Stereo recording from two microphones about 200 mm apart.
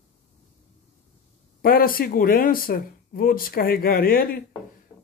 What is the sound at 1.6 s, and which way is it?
Speech, 45° left (ahead or behind).